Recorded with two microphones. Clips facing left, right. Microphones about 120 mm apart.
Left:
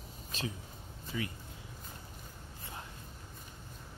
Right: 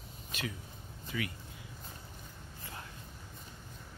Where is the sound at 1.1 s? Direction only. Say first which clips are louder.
Even; 20° left (ahead or behind).